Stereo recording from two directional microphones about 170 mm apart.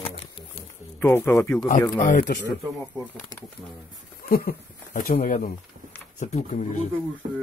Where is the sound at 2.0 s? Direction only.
50° left (ahead or behind).